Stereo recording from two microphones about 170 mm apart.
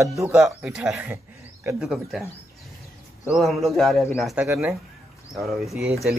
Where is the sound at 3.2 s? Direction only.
Centre (ahead or behind).